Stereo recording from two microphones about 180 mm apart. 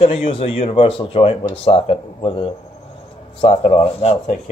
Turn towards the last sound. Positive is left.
turn(degrees=35)  # may be behind; listen again after turning